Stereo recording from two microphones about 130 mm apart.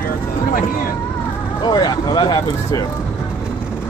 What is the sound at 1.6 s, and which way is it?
Speech, 35° left (ahead or behind).